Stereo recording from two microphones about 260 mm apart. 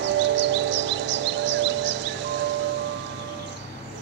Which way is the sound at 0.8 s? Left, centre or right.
Right.